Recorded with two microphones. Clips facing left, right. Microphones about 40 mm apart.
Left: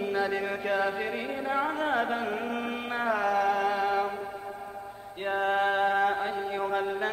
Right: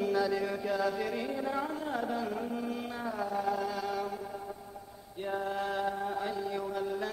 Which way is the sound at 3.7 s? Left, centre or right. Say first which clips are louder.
Left 8 dB; left.